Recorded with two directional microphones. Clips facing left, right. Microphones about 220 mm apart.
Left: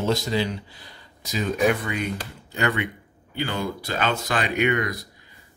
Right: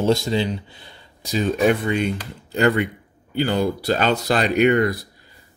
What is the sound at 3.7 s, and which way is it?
Speech, 35° right (ahead or behind).